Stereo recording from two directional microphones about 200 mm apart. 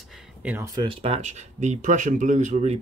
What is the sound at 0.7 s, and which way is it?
Speech, 25° right (ahead or behind).